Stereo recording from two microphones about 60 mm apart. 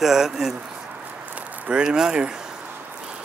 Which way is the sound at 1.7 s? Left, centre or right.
Centre.